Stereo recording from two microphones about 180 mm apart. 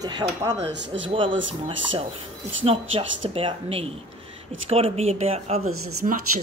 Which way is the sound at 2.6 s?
30° right (ahead or behind).